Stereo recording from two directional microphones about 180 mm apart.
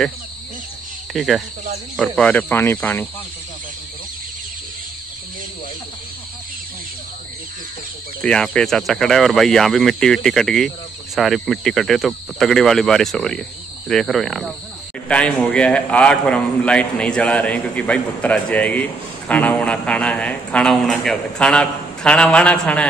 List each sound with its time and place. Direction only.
1.1 s a man's voice: centre (ahead or behind)
8.2 s a man's voice: 5° left (ahead or behind)